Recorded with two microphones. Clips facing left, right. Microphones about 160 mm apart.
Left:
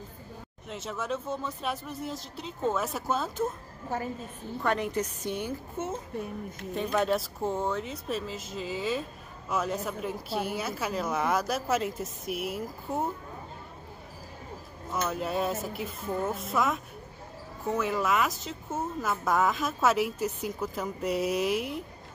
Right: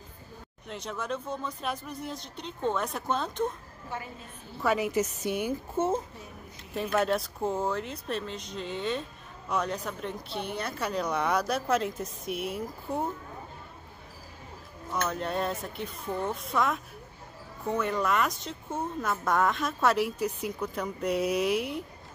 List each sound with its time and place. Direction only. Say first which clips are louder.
0.7 s speech: left 1 dB; centre (ahead or behind)
3.9 s a woman's voice: left 5 dB; 40° left (ahead or behind)
4.6 s a woman's voice: right 2 dB; 5° right (ahead or behind)
6.7 s speech: even; centre (ahead or behind)
14.9 s speech: even; 5° left (ahead or behind)